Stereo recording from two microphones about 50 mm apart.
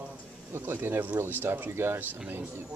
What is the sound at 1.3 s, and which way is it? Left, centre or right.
Speech, right.